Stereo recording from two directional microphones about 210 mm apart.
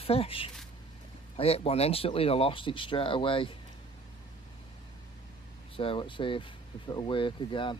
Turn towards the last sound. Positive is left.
turn(degrees=25)  # may be behind; listen again after turning